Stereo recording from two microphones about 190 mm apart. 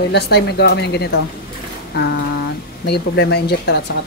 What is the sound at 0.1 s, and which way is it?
Speech, 60° left (ahead or behind).